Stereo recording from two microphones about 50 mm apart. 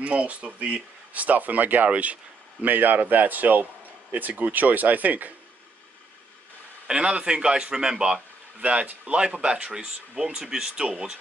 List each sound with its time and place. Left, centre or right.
0.0 s a man's voice: right
6.9 s a man's voice: right